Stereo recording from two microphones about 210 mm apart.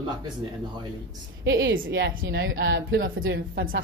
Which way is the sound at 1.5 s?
60° right (ahead or behind).